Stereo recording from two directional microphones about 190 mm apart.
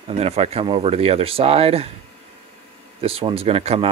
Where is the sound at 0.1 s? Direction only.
35° right (ahead or behind).